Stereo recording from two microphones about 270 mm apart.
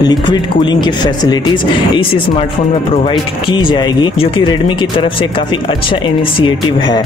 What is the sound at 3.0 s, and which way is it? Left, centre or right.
Speech, centre.